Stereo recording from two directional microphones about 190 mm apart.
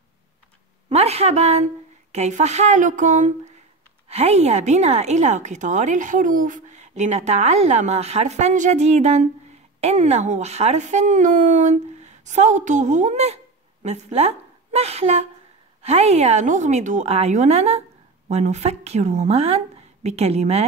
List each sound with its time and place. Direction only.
0.8 s a woman's voice: 35° right (ahead or behind)